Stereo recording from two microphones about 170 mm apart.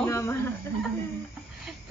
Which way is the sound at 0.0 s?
15° left (ahead or behind).